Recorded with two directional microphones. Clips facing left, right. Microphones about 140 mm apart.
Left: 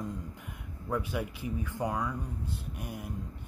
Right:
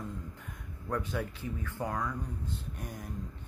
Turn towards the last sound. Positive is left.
turn(degrees=10)  # may be behind; listen again after turning